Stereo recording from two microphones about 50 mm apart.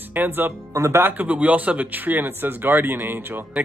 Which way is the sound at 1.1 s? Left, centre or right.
Right.